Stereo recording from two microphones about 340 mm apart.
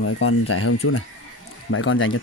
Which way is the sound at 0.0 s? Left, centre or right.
Left.